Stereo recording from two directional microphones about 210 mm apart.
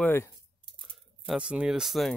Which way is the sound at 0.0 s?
10° left (ahead or behind).